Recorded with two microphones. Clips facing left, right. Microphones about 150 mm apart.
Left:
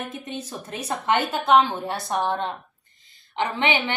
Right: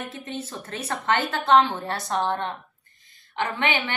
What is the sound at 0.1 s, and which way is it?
A woman's voice, 15° left (ahead or behind).